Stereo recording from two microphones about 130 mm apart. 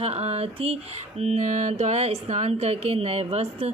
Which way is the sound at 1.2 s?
60° right (ahead or behind).